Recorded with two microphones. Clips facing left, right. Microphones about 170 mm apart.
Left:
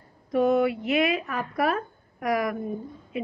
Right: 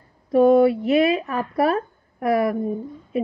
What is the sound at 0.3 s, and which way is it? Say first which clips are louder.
A woman's voice: right 7 dB; 30° right (ahead or behind).